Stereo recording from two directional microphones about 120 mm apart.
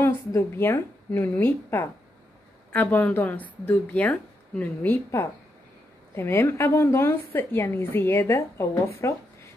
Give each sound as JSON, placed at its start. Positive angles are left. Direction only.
{"t": 0.0, "sound": "a woman's voice", "side_deg": 20}